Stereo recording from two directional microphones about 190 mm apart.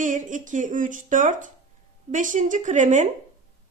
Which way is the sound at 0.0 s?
40° right (ahead or behind).